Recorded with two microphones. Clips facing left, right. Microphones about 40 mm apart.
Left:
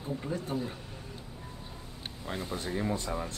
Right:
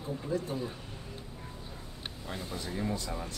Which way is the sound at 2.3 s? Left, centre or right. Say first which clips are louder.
Left 4 dB; left.